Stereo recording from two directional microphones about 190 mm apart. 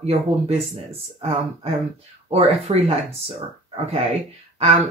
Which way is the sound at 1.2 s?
35° right (ahead or behind).